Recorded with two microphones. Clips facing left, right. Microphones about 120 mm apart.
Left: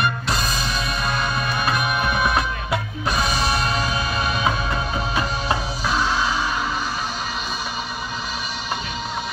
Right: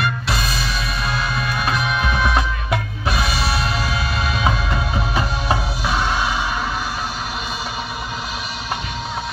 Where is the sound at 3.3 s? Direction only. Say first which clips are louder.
Even; 45° left (ahead or behind).